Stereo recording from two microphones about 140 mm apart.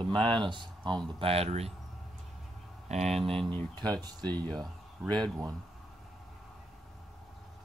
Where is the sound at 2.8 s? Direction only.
55° right (ahead or behind).